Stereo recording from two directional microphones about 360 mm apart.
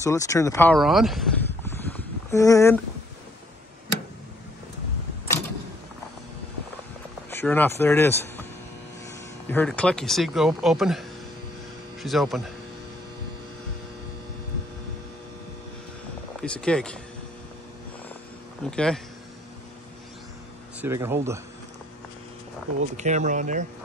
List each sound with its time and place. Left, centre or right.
0.0 s speech: centre
7.2 s speech: centre
9.5 s speech: centre
16.3 s speech: centre
18.6 s speech: centre
20.8 s speech: centre
22.8 s speech: centre